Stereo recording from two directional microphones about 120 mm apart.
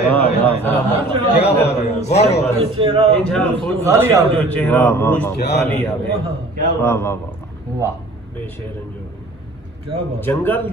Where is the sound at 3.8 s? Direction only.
25° right (ahead or behind).